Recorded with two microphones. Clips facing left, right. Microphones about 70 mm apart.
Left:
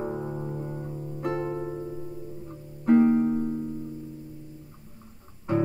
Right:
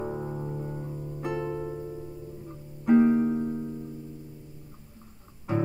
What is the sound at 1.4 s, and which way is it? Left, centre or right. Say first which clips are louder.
Music: left 1 dB; left.